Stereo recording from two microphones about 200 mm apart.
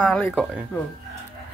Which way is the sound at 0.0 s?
5° left (ahead or behind).